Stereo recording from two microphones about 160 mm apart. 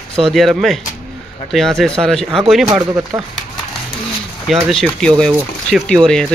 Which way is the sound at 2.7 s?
25° right (ahead or behind).